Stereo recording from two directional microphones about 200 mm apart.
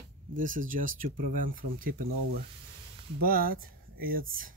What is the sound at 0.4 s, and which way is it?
Speech, 40° right (ahead or behind).